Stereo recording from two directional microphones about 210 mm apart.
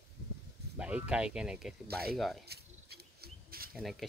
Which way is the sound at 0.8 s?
5° right (ahead or behind).